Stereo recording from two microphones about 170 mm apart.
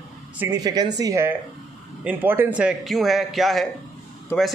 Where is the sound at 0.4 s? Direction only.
20° right (ahead or behind).